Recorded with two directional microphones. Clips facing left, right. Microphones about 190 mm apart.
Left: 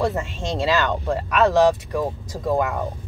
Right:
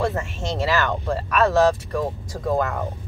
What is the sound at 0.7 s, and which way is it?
Speech, 15° left (ahead or behind).